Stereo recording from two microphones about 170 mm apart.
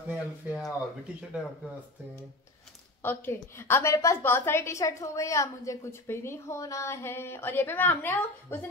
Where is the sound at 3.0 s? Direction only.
10° left (ahead or behind).